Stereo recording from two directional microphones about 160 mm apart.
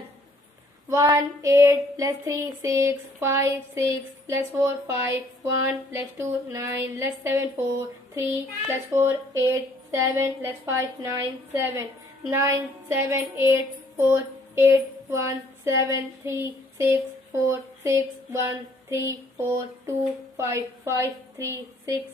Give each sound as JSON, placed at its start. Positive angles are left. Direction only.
{"t": 0.8, "sound": "speech", "side_deg": -20}
{"t": 12.3, "sound": "child singing", "side_deg": -20}
{"t": 17.5, "sound": "a sound", "side_deg": -15}
{"t": 19.0, "sound": "speech", "side_deg": -15}